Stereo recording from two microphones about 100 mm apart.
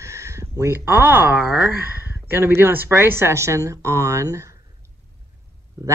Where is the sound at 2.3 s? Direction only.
25° right (ahead or behind).